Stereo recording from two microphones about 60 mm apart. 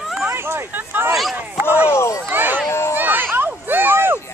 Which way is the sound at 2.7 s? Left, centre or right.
Left.